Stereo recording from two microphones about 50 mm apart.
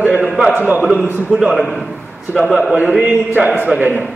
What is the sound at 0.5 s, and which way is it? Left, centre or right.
Speech, right.